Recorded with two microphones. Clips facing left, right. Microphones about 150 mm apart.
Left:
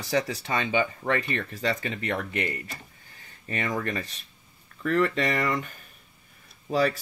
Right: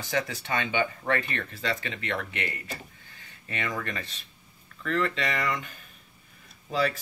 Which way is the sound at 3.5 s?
40° left (ahead or behind).